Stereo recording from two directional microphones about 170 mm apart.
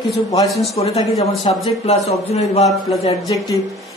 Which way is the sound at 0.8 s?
35° left (ahead or behind).